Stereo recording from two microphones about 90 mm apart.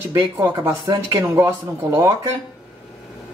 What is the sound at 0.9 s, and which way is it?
Speech, 50° right (ahead or behind).